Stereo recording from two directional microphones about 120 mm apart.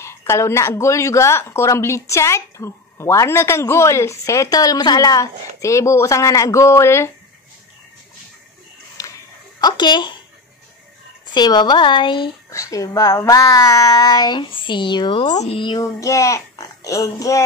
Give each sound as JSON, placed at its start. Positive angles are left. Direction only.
{"t": 0.0, "sound": "speech", "side_deg": 20}
{"t": 9.0, "sound": "dog", "side_deg": 30}
{"t": 9.6, "sound": "speech", "side_deg": 35}
{"t": 11.3, "sound": "child singing", "side_deg": 35}
{"t": 12.4, "sound": "child singing", "side_deg": 25}
{"t": 15.3, "sound": "speech", "side_deg": 60}
{"t": 15.8, "sound": "speech", "side_deg": 25}